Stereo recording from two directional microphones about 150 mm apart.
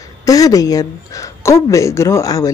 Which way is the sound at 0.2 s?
25° left (ahead or behind).